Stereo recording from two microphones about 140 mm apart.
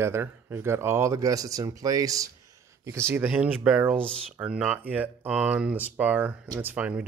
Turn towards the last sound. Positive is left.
turn(degrees=-10)  # may be behind; listen again after turning